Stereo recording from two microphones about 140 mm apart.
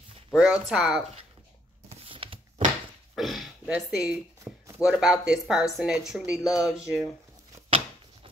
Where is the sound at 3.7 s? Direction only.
5° right (ahead or behind).